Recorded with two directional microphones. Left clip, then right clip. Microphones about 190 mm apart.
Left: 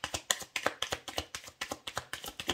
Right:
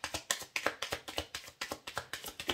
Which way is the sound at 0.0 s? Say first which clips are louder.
Left 3 dB; 35° left (ahead or behind).